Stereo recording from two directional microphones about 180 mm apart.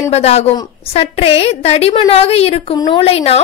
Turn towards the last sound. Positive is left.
turn(degrees=35)  # may be behind; listen again after turning